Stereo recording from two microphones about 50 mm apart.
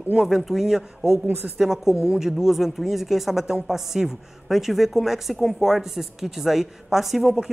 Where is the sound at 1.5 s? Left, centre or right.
Centre.